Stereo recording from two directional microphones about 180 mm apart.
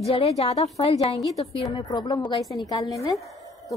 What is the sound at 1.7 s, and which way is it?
Speech, 25° left (ahead or behind).